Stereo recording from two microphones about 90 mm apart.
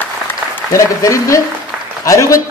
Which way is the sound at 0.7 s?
40° left (ahead or behind).